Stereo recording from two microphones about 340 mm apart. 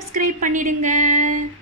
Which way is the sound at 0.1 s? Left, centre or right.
Right.